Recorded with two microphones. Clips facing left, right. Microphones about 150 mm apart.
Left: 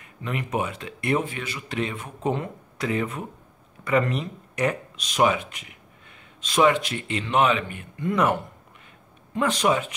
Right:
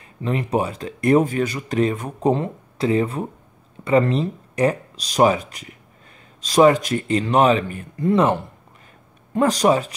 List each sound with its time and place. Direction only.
0.2 s speech: 35° right (ahead or behind)
9.3 s speech: 40° right (ahead or behind)